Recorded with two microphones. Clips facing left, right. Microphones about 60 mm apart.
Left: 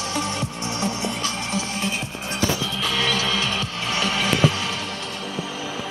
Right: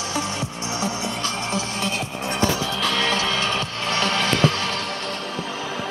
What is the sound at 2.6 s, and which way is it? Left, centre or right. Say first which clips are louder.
Music: right 2 dB; right.